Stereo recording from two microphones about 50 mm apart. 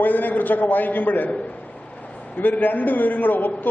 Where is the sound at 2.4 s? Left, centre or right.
Left.